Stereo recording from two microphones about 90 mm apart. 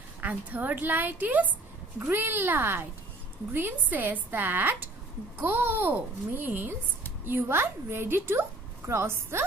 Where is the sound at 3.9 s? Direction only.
20° right (ahead or behind).